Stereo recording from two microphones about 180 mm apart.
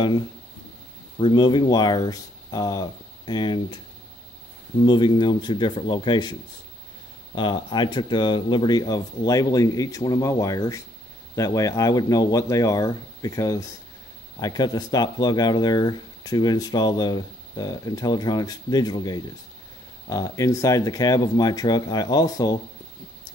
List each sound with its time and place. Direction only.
1.1 s speech: 25° left (ahead or behind)
4.8 s speech: 25° left (ahead or behind)
7.3 s speech: 25° left (ahead or behind)